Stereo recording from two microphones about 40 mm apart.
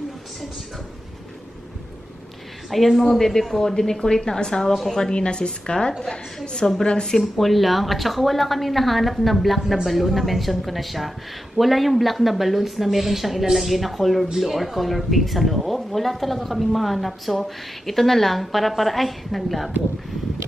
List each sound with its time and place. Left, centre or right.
2.7 s speech: centre
3.2 s a woman's voice: centre
7.2 s speech: centre